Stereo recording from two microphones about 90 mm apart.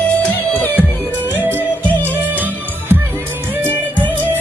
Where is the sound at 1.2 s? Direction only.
20° right (ahead or behind).